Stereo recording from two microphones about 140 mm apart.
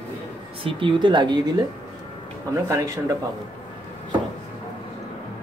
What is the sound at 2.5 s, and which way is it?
Speech, 20° right (ahead or behind).